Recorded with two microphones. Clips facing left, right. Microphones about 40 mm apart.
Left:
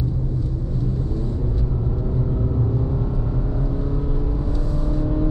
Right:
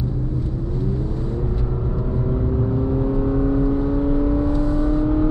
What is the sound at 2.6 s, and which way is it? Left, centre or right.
Vehicle, right.